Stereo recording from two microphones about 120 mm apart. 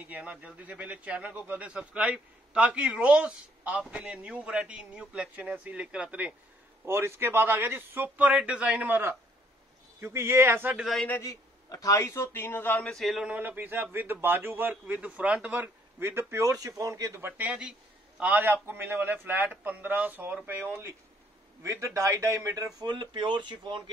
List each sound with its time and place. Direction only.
0.0 s speech: 10° right (ahead or behind)
6.9 s speech: 20° right (ahead or behind)
10.8 s a man's voice: centre (ahead or behind)
11.1 s a man's voice: 25° left (ahead or behind)
12.9 s speech: centre (ahead or behind); by 17.5 s 20° right (ahead or behind)
17.5 s speech: 10° right (ahead or behind)
21.6 s speech: 25° right (ahead or behind)
22.8 s speech: 40° right (ahead or behind)